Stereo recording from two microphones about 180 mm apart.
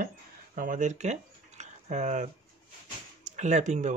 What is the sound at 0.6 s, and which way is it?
Speech, 45° right (ahead or behind).